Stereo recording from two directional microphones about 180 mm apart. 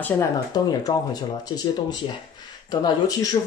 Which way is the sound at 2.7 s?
20° left (ahead or behind).